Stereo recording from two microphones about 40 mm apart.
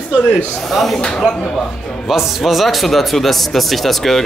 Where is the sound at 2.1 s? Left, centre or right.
Centre.